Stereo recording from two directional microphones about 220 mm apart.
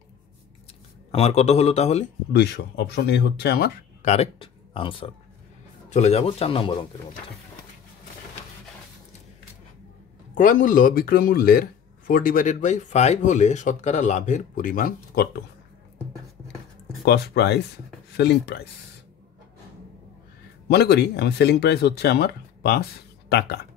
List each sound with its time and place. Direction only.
1.1 s a man's voice: 30° left (ahead or behind)
2.3 s speech: 50° left (ahead or behind)
4.1 s a man's voice: 25° left (ahead or behind)
10.3 s speech: 35° left (ahead or behind)
17.0 s speech: 50° left (ahead or behind)
20.6 s speech: 45° left (ahead or behind)